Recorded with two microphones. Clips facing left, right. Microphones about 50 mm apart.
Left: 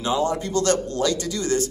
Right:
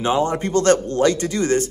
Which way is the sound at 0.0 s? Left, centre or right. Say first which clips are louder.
Right 3 dB; right.